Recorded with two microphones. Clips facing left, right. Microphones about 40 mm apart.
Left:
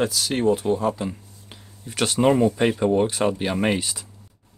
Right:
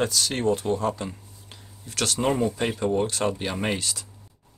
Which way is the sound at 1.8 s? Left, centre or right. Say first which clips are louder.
Left 5 dB; centre.